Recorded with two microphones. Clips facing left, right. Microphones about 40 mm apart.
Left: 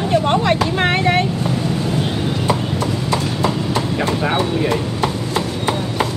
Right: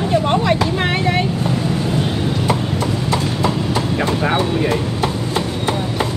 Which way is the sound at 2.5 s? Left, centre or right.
Right.